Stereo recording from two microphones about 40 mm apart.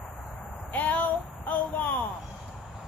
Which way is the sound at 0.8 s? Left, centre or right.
Left.